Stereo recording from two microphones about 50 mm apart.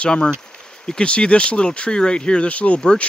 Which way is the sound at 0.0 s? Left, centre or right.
Left.